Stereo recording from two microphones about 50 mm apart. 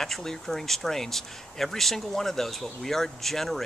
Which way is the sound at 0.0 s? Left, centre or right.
Centre.